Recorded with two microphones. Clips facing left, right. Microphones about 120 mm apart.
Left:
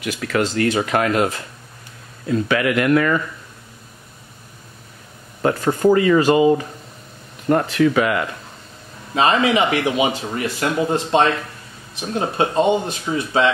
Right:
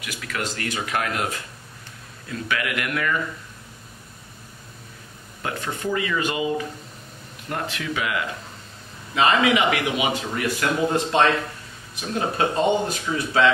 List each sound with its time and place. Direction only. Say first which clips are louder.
0.4 s speech: left 10 dB; 30° left (ahead or behind)
2.2 s speech: left 9 dB; 30° left (ahead or behind)
5.4 s speech: left 12 dB; 40° left (ahead or behind)
9.1 s speech: left 3 dB; 30° left (ahead or behind)